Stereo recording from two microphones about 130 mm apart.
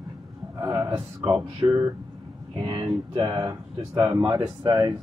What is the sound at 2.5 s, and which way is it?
Speech, 40° right (ahead or behind).